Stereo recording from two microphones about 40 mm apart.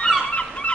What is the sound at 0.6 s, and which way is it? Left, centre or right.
Fowl, left.